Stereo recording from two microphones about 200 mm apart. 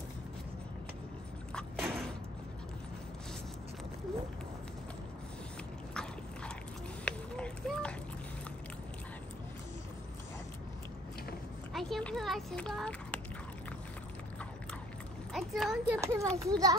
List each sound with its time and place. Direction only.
1.5 s a sound: centre (ahead or behind)
7.1 s run: 5° left (ahead or behind)
11.7 s speech: 5° left (ahead or behind)
15.3 s a child's voice: centre (ahead or behind)
16.0 s a child's voice: 15° right (ahead or behind)